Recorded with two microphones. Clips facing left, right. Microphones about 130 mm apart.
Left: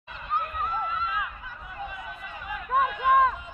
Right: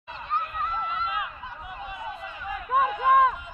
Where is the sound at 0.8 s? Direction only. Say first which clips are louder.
Even; 20° right (ahead or behind).